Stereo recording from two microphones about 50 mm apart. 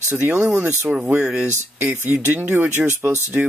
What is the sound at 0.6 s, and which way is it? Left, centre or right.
Speech, right.